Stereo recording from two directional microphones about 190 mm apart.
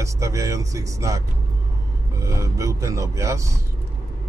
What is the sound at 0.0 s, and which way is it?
Speech, 15° right (ahead or behind).